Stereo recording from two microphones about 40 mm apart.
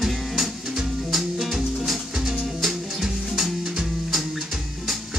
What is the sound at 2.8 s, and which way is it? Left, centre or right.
Music, centre.